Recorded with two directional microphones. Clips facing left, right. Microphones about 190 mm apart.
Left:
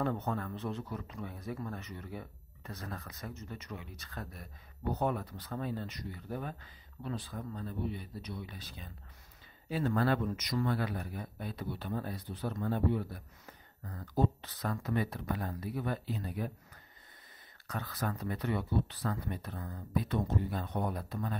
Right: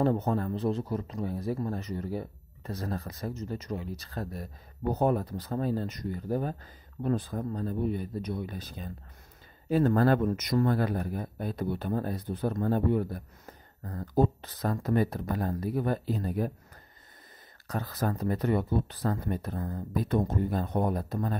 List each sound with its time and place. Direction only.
0.0 s speech: 35° right (ahead or behind)
17.6 s speech: 40° right (ahead or behind)